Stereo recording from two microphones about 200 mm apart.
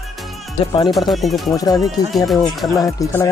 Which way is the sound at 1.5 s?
20° left (ahead or behind).